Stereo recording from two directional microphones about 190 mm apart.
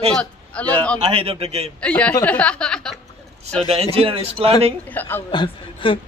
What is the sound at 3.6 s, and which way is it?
A man's voice, 30° right (ahead or behind).